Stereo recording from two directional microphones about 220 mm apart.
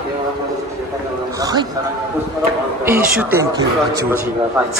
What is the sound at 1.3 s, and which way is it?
Speech, 15° right (ahead or behind).